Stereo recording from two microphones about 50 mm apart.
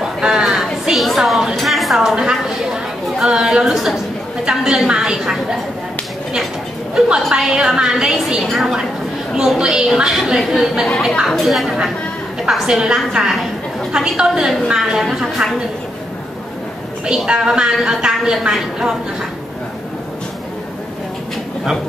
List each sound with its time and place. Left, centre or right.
0.2 s a sound: centre
0.5 s a sound: centre
2.2 s chatter: centre
3.7 s a woman's voice: centre
7.2 s a woman's voice: centre
7.5 s a woman's voice: centre
7.9 s a woman's voice: centre
9.6 s a woman's voice: centre
17.0 s a woman's voice: centre